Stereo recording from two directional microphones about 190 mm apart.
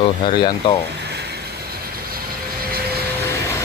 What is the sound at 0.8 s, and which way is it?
Vehicle, 60° right (ahead or behind).